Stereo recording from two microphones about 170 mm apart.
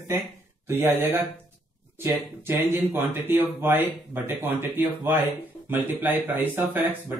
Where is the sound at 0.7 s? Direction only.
15° right (ahead or behind).